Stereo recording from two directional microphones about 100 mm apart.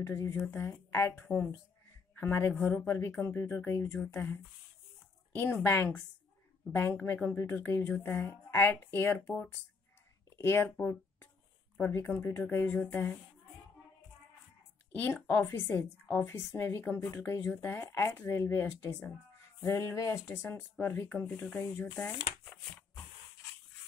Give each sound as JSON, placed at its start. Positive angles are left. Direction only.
{"t": 0.0, "sound": "a woman's voice", "side_deg": 25}
{"t": 5.3, "sound": "a woman's voice", "side_deg": 20}
{"t": 10.3, "sound": "a woman's voice", "side_deg": 25}
{"t": 14.9, "sound": "a woman's voice", "side_deg": 20}
{"t": 19.6, "sound": "a woman's voice", "side_deg": 30}